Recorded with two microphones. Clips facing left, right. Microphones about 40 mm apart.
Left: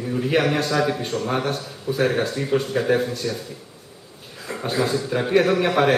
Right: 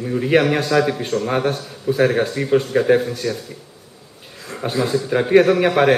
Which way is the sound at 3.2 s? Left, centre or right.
Right.